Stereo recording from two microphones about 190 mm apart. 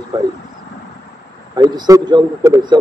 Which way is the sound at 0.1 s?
25° right (ahead or behind).